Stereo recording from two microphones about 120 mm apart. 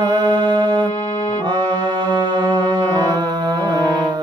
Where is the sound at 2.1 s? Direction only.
35° right (ahead or behind).